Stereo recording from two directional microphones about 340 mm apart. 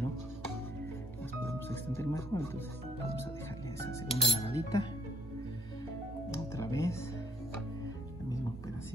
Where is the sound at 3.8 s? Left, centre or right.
Centre.